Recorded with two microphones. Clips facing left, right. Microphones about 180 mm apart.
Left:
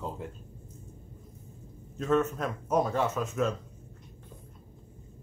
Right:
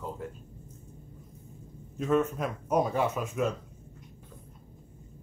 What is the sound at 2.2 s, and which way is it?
Speech, 10° right (ahead or behind).